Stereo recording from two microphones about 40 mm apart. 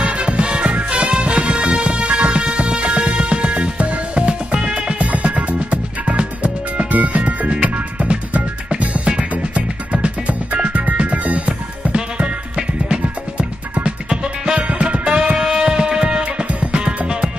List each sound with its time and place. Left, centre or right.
0.0 s music: right
6.9 s music: right